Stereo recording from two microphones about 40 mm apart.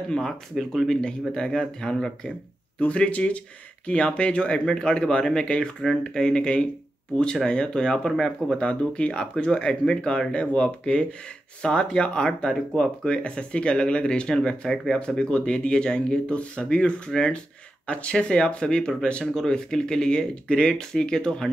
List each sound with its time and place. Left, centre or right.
0.1 s speech: centre
2.9 s speech: left
8.5 s speech: left
12.5 s speech: centre
13.0 s speech: left